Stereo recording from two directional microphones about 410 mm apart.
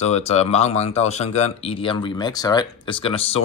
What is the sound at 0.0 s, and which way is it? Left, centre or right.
Speech, centre.